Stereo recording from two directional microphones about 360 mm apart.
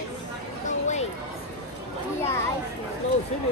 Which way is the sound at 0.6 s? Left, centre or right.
Centre.